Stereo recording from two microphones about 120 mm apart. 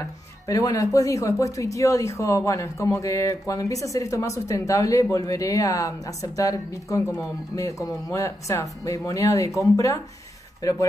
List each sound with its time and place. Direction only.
0.5 s speech: 30° left (ahead or behind)